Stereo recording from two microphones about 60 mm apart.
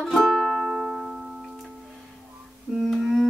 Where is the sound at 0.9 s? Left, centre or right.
Centre.